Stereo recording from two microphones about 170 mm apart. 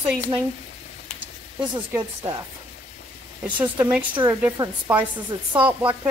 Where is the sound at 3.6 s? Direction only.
10° right (ahead or behind).